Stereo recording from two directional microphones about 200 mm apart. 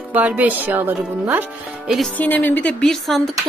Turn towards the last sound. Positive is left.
turn(degrees=0)  # may be behind; listen again after turning